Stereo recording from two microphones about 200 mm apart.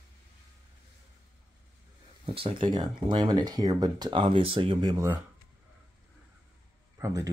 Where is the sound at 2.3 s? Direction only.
25° right (ahead or behind).